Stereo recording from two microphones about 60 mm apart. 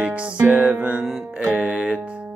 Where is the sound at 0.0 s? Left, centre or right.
Centre.